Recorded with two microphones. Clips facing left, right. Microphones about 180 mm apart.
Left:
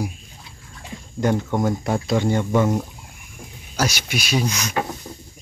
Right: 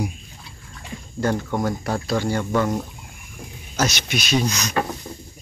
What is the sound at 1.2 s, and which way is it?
Speech, 15° left (ahead or behind).